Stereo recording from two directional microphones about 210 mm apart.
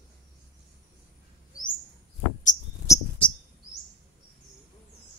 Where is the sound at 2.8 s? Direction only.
15° left (ahead or behind).